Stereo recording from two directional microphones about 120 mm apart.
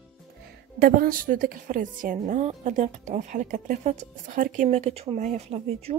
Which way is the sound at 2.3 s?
80° right.